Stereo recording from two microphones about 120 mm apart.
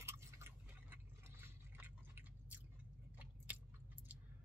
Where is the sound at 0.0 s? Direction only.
25° right (ahead or behind).